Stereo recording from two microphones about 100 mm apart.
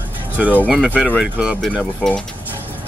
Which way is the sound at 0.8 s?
10° left (ahead or behind).